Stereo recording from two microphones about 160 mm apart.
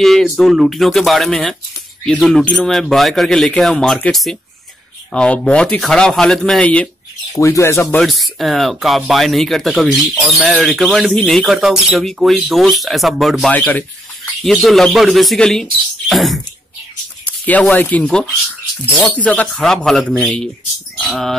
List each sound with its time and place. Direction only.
0.0 s speech: centre (ahead or behind)
7.3 s speech: 20° left (ahead or behind)
8.0 s speech: centre (ahead or behind)